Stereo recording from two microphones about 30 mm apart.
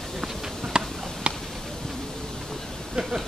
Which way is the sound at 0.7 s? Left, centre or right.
Right.